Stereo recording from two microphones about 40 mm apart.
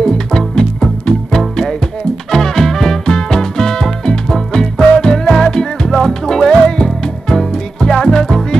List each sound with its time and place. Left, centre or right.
0.0 s music: centre
2.3 s music: centre